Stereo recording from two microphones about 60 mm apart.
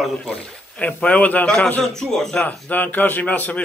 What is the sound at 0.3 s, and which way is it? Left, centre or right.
Speech, left.